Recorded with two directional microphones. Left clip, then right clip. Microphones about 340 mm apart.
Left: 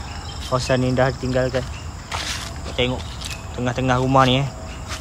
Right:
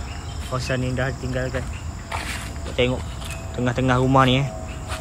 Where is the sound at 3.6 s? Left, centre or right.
Centre.